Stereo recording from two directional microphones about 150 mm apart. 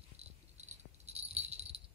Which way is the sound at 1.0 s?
45° right (ahead or behind).